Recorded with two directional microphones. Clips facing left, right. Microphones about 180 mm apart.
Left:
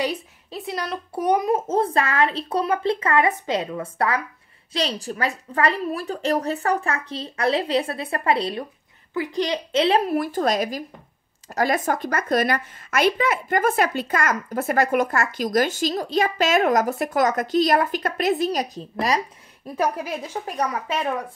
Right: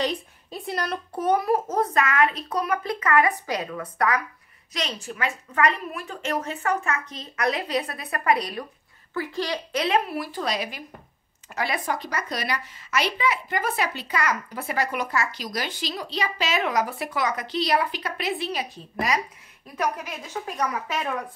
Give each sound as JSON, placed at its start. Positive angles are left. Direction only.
{"t": 0.0, "sound": "speech", "side_deg": 5}
{"t": 1.1, "sound": "a child's voice", "side_deg": 15}
{"t": 9.1, "sound": "a child's voice", "side_deg": 15}
{"t": 10.1, "sound": "a woman's voice", "side_deg": 50}